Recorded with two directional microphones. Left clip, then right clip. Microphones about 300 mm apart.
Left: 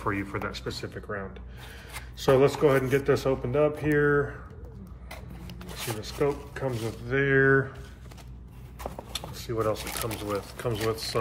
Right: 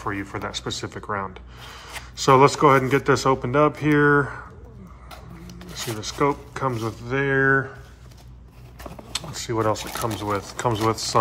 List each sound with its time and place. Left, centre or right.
0.0 s speech: centre; by 4.2 s right
5.9 s speech: right
9.1 s a sound: right
10.3 s speech: centre